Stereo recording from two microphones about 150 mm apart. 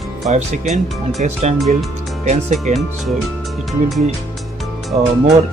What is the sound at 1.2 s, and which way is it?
Speech, 55° right (ahead or behind).